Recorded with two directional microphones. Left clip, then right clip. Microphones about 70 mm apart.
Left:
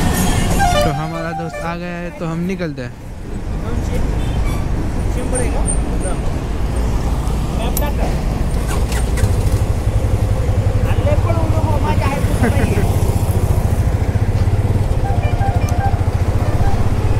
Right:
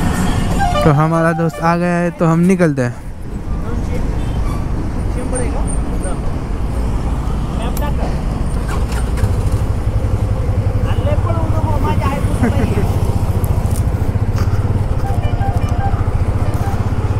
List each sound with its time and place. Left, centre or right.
0.0 s music: left
0.8 s speech: right
11.8 s vehicle: left